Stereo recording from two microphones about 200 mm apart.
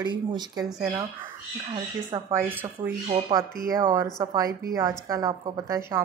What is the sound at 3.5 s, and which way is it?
Speech, 45° right (ahead or behind).